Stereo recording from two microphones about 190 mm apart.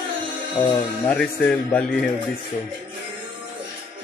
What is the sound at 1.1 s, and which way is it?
Speech, 5° left (ahead or behind).